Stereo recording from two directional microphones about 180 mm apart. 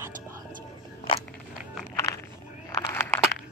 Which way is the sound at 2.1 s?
20° left (ahead or behind).